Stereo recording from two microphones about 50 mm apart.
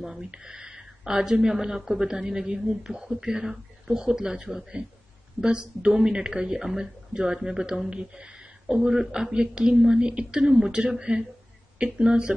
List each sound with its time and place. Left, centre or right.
0.0 s speech: centre